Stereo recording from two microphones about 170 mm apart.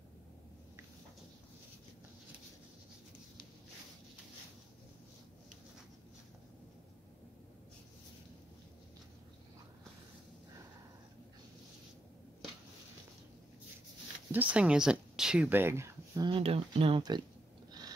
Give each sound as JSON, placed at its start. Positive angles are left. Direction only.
{"t": 14.3, "sound": "speech", "side_deg": -10}
{"t": 16.3, "sound": "speech", "side_deg": -35}